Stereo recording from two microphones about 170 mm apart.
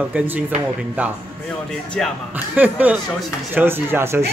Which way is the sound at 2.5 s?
10° right (ahead or behind).